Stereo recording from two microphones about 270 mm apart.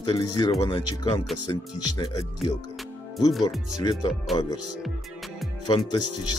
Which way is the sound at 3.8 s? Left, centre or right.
Centre.